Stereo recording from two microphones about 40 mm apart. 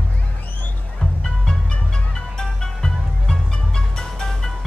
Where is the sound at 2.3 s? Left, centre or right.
Centre.